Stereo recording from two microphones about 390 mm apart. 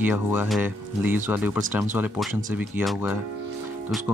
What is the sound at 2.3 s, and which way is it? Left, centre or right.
Speech, centre.